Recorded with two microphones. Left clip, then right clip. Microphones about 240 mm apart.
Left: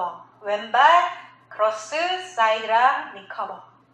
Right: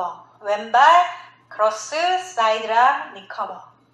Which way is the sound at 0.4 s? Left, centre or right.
Right.